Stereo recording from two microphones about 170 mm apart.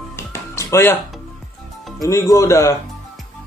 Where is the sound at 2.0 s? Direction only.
20° left (ahead or behind).